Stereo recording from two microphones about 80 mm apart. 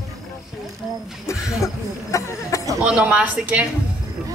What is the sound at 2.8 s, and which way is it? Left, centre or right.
Speech, centre.